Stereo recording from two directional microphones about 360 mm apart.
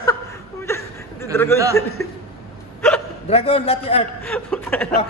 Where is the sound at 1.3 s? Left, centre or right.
Centre.